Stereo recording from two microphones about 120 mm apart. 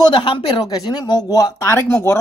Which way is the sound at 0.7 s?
35° left (ahead or behind).